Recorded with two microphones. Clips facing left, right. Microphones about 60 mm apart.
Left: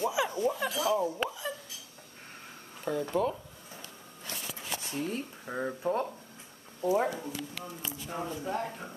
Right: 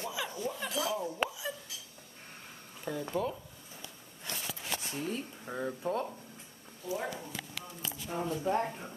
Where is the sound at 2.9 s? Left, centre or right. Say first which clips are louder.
Left 5 dB; centre.